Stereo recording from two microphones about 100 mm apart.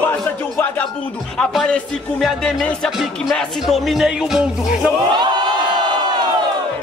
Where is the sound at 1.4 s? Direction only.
10° left (ahead or behind).